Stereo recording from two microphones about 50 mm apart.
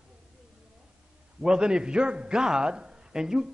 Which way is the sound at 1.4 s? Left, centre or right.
Centre.